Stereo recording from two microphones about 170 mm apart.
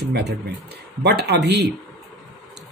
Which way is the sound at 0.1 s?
85° right.